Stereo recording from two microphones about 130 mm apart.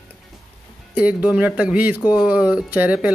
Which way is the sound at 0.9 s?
10° right (ahead or behind).